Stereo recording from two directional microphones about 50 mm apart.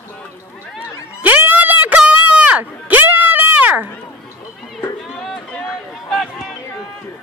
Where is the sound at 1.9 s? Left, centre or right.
Right.